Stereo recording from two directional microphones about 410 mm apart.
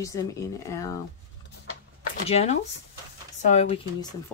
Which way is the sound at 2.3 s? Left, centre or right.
Centre.